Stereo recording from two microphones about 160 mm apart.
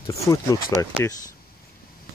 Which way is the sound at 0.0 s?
20° left (ahead or behind).